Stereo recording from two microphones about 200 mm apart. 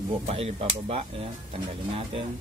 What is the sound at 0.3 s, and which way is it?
Speech, 30° right (ahead or behind).